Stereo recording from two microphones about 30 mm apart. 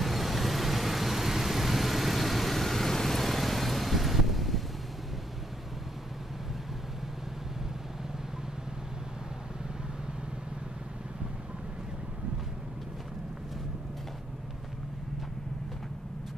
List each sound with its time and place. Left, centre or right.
0.0 s vehicle: centre